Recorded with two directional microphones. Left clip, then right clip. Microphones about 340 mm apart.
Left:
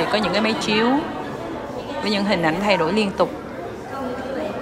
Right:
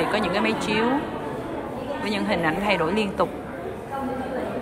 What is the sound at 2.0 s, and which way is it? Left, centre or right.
A woman's voice, centre.